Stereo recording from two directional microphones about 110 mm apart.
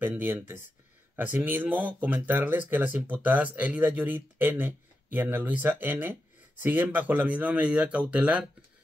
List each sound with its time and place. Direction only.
0.0 s speech: 20° right (ahead or behind)